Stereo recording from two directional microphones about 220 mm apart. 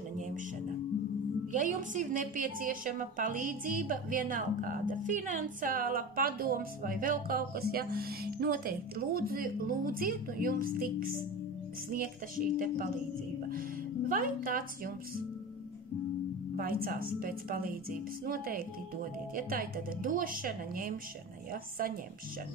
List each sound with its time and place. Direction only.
1.5 s a woman's voice: 35° right (ahead or behind)
14.0 s a woman's voice: 40° right (ahead or behind)
16.5 s a woman's voice: 40° right (ahead or behind)